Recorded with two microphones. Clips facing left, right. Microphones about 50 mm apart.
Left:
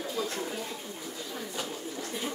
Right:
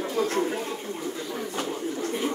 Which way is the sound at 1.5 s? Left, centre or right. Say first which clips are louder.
Right 8 dB; right.